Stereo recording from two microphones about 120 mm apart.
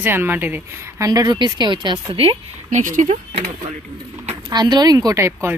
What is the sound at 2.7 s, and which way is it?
Speech, 85° right.